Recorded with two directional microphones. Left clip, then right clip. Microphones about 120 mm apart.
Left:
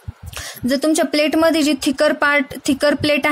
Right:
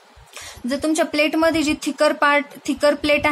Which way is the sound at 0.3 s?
45° left (ahead or behind).